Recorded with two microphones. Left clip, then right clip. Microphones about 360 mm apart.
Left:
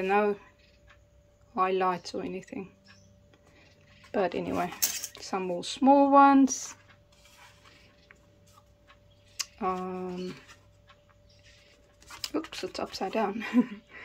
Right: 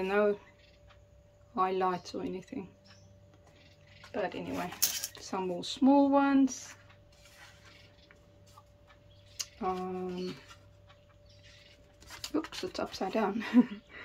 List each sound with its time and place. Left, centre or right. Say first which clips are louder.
0.0 s speech: left 3 dB; centre
1.5 s speech: left 3 dB; centre
4.1 s speech: left 7 dB; centre
9.4 s a sound: left 3 dB; centre
12.2 s speech: left 2 dB; centre